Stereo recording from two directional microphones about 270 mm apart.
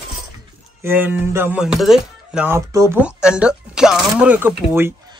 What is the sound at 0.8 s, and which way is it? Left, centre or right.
Speech, centre.